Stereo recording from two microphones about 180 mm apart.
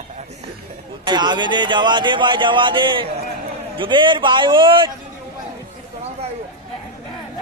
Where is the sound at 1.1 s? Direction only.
25° right (ahead or behind).